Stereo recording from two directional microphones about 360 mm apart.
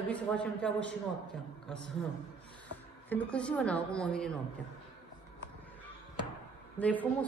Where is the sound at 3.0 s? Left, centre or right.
Centre.